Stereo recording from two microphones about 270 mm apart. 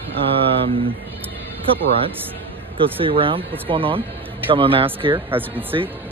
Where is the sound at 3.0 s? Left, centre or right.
Centre.